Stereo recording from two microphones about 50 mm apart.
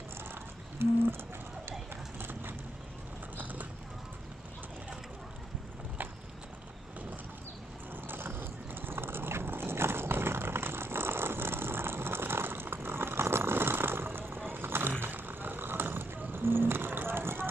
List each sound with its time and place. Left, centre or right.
0.3 s a sound: right
1.7 s clip-clop: right
3.3 s clip-clop: right
7.9 s vehicle: right